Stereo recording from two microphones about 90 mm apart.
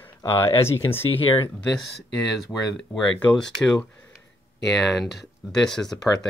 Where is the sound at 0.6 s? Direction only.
30° left (ahead or behind).